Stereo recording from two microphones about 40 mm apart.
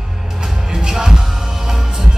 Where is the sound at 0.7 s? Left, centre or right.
Centre.